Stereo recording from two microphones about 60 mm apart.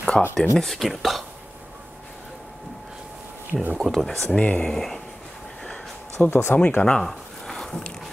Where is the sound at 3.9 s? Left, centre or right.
Centre.